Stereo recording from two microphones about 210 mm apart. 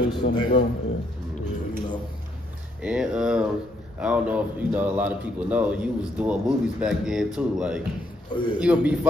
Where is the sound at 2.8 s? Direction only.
5° right (ahead or behind).